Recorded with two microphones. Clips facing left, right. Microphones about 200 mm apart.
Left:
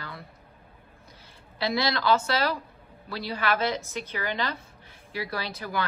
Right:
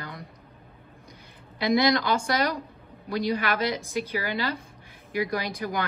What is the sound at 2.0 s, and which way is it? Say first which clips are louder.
A woman's voice: left 1 dB; 15° right (ahead or behind).